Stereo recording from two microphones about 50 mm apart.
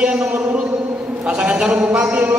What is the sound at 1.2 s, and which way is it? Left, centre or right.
Speech, right.